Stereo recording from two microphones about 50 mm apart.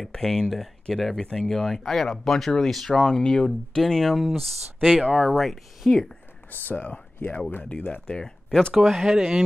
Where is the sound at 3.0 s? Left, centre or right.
Centre.